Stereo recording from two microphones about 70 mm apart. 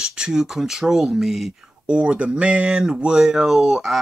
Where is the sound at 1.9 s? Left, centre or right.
Centre.